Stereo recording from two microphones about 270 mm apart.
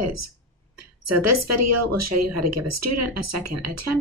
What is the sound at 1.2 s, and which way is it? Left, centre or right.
Speech, right.